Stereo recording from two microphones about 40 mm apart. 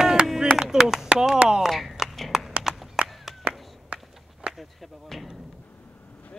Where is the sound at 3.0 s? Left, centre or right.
Centre.